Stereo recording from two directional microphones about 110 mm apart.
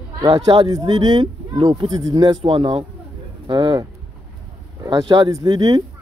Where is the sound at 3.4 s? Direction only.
45° right (ahead or behind).